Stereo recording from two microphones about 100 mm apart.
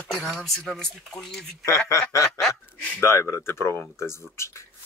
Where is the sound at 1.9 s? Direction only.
30° left (ahead or behind).